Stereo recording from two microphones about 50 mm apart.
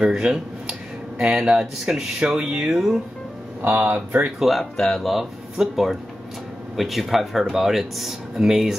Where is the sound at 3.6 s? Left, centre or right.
Right.